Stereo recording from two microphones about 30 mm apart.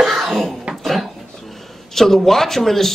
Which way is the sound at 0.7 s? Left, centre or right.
Right.